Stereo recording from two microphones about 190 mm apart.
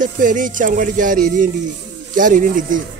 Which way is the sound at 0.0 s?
45° right (ahead or behind).